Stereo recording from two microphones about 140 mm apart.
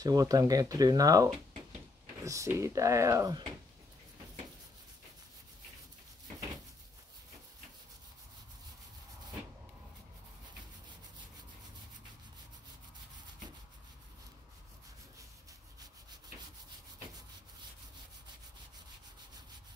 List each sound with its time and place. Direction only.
0.0 s speech: 25° right (ahead or behind)